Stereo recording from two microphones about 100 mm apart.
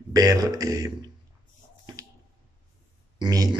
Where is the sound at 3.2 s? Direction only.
40° right (ahead or behind).